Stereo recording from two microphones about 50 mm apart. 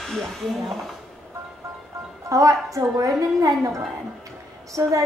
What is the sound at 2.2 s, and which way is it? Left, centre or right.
Speech, right.